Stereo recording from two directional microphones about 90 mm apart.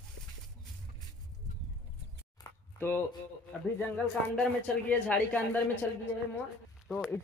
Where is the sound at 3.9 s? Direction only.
10° left (ahead or behind).